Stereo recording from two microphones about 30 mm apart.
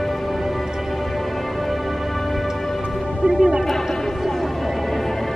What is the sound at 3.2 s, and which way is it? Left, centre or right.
Music, right.